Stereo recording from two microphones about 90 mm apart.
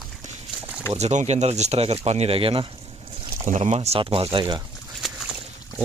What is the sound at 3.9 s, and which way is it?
Speech, 90° right.